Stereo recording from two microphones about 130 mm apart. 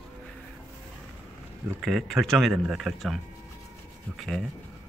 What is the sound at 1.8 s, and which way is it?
Speech, centre (ahead or behind).